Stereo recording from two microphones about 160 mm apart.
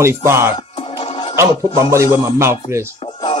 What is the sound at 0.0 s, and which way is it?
Speech, 15° right (ahead or behind).